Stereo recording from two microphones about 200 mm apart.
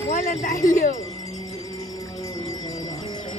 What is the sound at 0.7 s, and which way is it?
Speech, 40° left (ahead or behind).